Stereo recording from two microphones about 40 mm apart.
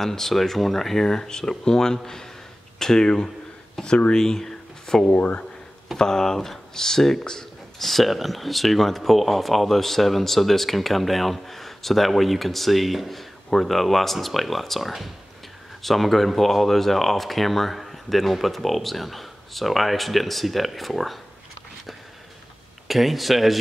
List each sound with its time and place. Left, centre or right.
0.0 s speech: centre
3.8 s a sound: centre
5.0 s speech: left
5.9 s speech: centre
22.8 s speech: centre